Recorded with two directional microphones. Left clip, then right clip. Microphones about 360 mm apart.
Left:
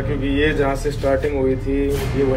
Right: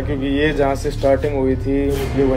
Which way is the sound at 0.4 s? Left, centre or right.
Right.